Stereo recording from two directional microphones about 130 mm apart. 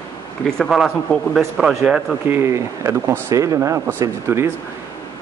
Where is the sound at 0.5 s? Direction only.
Centre (ahead or behind).